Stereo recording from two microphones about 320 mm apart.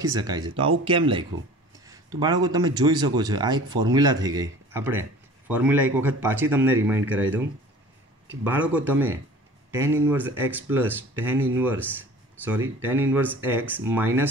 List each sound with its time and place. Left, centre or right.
0.0 s a man's voice: centre